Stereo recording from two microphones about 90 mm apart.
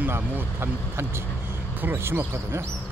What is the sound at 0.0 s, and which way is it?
Speech, 25° right (ahead or behind).